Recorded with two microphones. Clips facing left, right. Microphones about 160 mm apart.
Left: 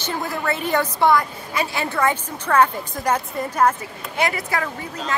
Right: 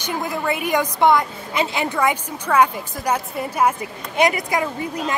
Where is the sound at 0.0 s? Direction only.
15° right (ahead or behind).